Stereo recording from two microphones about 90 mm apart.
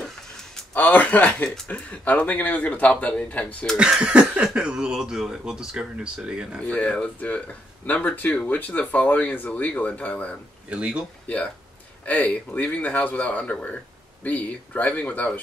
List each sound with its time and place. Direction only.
0.7 s speech: 20° left (ahead or behind)
3.7 s speech: 10° right (ahead or behind)
6.6 s speech: 15° left (ahead or behind)
10.7 s speech: 10° right (ahead or behind)
11.2 s speech: 15° left (ahead or behind)